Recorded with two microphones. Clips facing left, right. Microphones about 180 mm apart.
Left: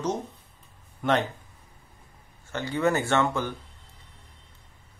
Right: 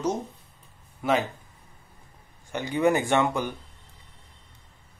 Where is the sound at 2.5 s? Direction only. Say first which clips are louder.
Right 2 dB; 15° right (ahead or behind).